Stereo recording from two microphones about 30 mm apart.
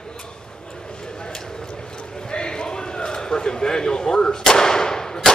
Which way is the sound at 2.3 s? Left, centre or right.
Left.